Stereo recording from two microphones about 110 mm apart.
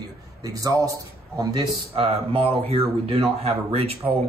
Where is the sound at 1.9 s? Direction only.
55° right (ahead or behind).